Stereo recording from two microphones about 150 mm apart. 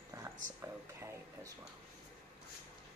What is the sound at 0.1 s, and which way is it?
Speech, 20° right (ahead or behind).